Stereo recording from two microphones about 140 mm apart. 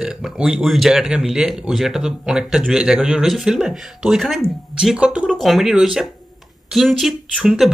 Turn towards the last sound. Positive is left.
turn(degrees=-5)  # may be behind; listen again after turning